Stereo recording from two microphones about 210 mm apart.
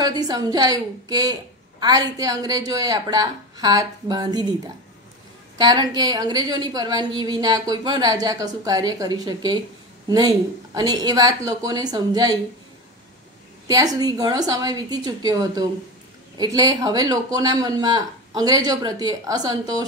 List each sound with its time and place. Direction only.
0.0 s a woman's voice: 20° right (ahead or behind)
5.6 s a woman's voice: 20° right (ahead or behind)
13.7 s a woman's voice: 15° right (ahead or behind)